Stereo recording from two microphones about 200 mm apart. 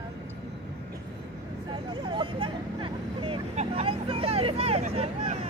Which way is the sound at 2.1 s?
25° right (ahead or behind).